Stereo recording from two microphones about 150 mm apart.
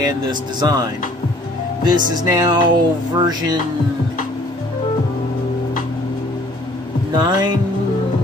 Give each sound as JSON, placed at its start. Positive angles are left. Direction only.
{"t": 0.0, "sound": "speech", "side_deg": -25}
{"t": 1.9, "sound": "speech", "side_deg": -25}
{"t": 7.2, "sound": "speech", "side_deg": -30}